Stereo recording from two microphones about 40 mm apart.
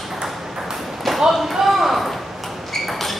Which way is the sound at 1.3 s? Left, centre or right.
Centre.